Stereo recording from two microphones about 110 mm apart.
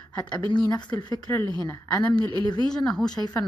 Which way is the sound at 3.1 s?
40° left (ahead or behind).